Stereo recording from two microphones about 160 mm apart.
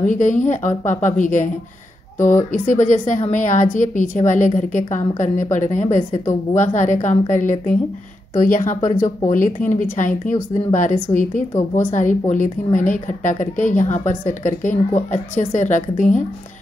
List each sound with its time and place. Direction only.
0.0 s a woman's voice: 50° left (ahead or behind)